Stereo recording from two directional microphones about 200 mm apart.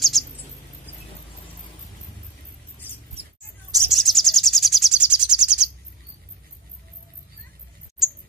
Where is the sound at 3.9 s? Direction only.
Centre (ahead or behind).